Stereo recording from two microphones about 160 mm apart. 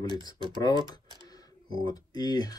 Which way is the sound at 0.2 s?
30° right (ahead or behind).